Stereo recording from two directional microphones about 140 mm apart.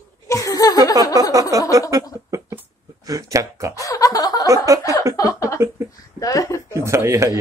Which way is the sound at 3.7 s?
25° left (ahead or behind).